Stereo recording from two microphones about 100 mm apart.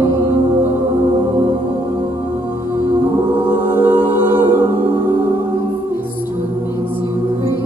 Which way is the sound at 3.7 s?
25° right (ahead or behind).